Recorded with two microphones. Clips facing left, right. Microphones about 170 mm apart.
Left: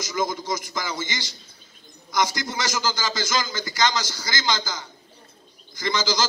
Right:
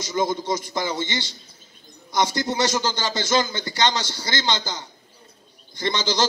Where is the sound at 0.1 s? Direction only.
30° right (ahead or behind).